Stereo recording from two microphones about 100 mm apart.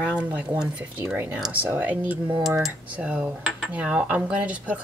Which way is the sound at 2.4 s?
Centre (ahead or behind).